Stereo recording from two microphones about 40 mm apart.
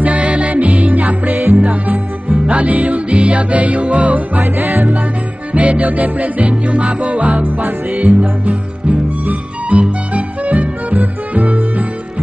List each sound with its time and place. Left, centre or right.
0.0 s music: right
4.6 s music: right
5.5 s music: right